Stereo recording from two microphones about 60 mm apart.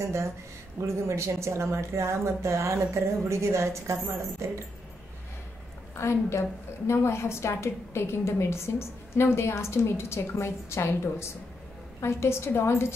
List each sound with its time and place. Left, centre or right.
0.0 s speech: right
5.9 s a woman's voice: left